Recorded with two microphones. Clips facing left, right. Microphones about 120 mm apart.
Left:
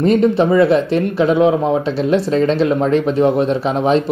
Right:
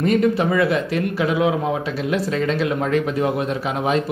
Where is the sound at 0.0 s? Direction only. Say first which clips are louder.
Left 5 dB; 25° left (ahead or behind).